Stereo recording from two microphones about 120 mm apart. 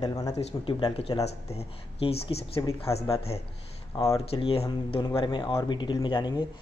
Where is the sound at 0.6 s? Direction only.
50° left (ahead or behind).